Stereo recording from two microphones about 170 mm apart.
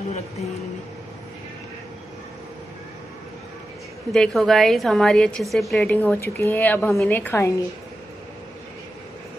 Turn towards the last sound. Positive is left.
turn(degrees=15)  # may be behind; listen again after turning